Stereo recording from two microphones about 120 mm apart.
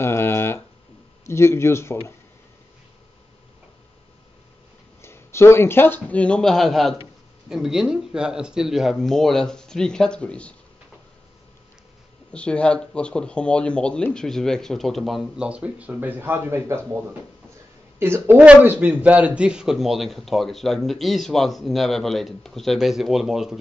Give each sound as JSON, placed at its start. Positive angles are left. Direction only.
{"t": 0.0, "sound": "a sound", "side_deg": 20}
{"t": 1.2, "sound": "speech", "side_deg": 25}
{"t": 5.0, "sound": "a man's voice", "side_deg": 20}
{"t": 12.3, "sound": "a man's voice", "side_deg": 10}